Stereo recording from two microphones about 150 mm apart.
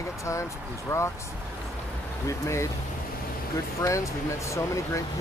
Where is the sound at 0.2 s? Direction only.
20° left (ahead or behind).